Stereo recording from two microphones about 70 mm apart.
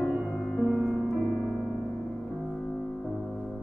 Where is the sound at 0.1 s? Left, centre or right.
Right.